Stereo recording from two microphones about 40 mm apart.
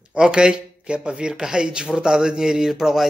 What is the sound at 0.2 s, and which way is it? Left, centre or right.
Speech, right.